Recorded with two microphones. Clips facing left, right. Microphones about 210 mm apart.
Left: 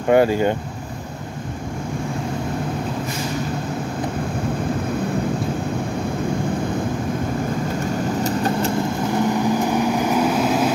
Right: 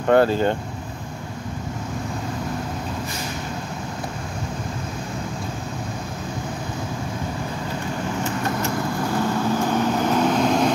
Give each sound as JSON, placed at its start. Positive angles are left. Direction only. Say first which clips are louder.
{"t": 0.1, "sound": "speech", "louder": "left 1 dB", "side_deg": 10}
{"t": 8.2, "sound": "vehicle", "louder": "left 4 dB", "side_deg": 30}
{"t": 9.1, "sound": "vehicle", "louder": "left 3 dB", "side_deg": 15}